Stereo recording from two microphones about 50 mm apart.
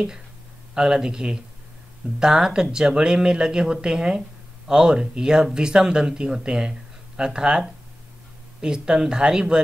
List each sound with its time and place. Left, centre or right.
0.7 s speech: centre